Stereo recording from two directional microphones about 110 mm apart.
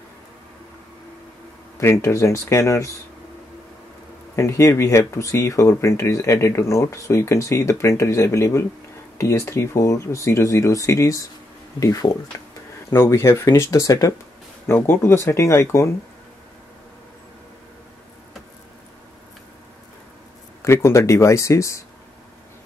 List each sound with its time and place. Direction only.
1.8 s speech: 25° left (ahead or behind)
4.4 s speech: 25° left (ahead or behind)
20.6 s speech: 25° left (ahead or behind)